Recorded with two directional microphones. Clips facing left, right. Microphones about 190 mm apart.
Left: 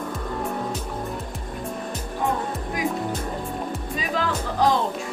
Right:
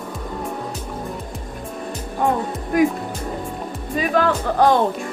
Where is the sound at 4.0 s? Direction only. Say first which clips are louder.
Right 8 dB; 55° right (ahead or behind).